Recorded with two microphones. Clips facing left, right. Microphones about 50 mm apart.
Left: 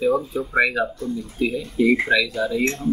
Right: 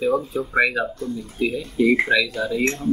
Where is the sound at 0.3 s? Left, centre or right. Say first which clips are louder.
Even; centre.